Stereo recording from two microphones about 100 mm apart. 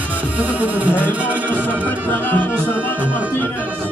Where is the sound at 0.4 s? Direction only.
15° right (ahead or behind).